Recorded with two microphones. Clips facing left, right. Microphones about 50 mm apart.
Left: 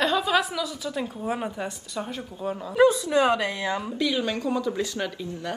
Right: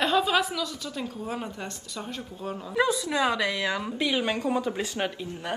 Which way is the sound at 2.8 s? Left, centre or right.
Left.